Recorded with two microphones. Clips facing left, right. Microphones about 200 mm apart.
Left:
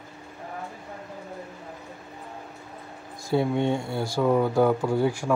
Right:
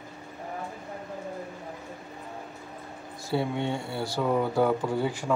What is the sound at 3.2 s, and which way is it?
Speech, 15° left (ahead or behind).